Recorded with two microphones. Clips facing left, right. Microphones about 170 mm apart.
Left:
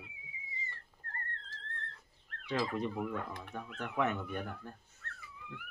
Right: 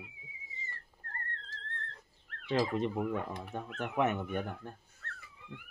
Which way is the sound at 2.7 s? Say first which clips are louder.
Right 3 dB; 20° right (ahead or behind).